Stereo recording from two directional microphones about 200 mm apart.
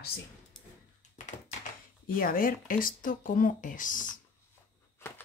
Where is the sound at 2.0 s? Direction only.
45° left (ahead or behind).